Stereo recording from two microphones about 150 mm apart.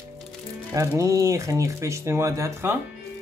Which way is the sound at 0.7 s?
20° right (ahead or behind).